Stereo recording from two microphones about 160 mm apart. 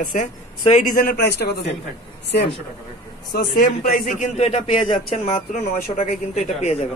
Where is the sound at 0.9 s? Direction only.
70° left (ahead or behind); by 1.7 s 90° left.